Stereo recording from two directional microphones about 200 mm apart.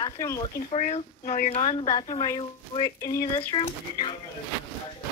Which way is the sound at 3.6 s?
25° left (ahead or behind).